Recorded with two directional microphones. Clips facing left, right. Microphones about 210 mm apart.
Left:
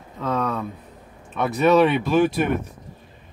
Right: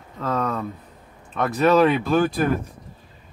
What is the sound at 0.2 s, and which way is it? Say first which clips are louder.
Speech: even; centre (ahead or behind).